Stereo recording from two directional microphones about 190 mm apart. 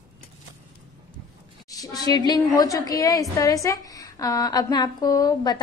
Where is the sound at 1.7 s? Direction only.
20° left (ahead or behind).